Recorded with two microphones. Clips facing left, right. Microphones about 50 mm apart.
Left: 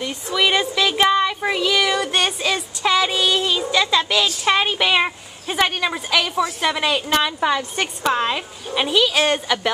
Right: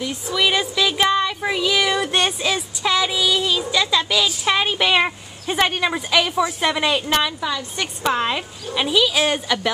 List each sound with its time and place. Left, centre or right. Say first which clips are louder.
0.0 s speech: left 1 dB; centre
7.3 s a woman's voice: left 5 dB; left
8.0 s speech: even; centre